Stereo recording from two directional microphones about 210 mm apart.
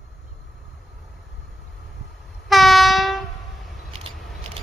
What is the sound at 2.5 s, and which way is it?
Train, centre (ahead or behind).